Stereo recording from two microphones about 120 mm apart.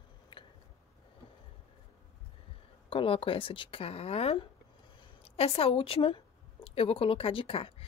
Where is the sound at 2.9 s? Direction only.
50° left (ahead or behind).